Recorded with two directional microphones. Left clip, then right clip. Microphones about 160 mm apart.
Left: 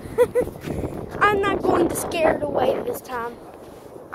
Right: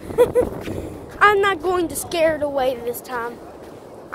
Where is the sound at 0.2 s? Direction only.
Centre (ahead or behind).